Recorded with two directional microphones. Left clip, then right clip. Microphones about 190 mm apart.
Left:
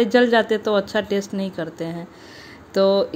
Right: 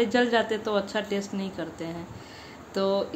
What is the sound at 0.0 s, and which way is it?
Speech, 35° left (ahead or behind).